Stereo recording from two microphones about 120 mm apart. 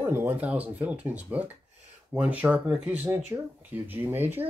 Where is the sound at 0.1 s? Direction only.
20° right (ahead or behind).